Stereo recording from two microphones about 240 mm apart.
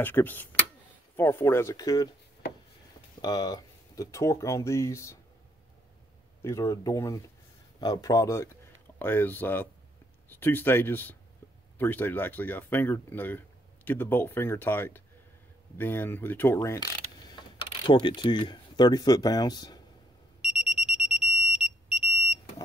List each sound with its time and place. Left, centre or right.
0.0 s speech: centre
3.2 s speech: centre
6.4 s speech: centre
20.4 s alarm: centre